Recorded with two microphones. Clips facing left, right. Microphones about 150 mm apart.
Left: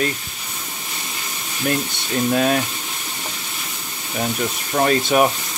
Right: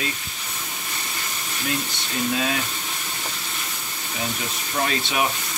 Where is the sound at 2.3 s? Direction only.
50° left (ahead or behind).